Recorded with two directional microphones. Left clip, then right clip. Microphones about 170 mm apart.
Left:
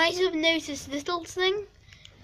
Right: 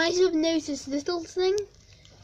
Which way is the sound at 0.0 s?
40° right (ahead or behind).